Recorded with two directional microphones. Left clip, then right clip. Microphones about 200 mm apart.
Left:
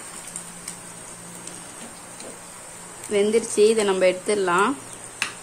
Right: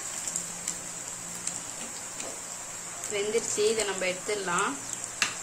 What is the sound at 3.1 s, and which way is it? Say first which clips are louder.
Speech: left 9 dB; 55° left (ahead or behind).